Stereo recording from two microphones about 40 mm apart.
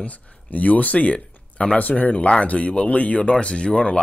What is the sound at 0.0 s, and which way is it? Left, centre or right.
Speech, left.